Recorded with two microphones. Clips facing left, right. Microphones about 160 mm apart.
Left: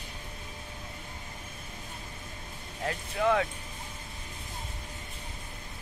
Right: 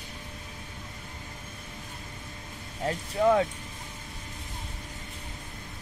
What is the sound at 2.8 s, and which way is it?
Speech, 30° right (ahead or behind).